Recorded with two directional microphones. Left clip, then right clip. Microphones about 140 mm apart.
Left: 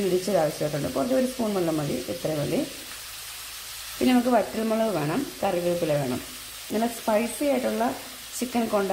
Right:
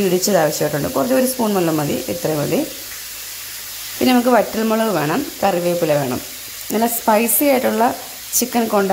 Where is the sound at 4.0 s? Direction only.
10° right (ahead or behind).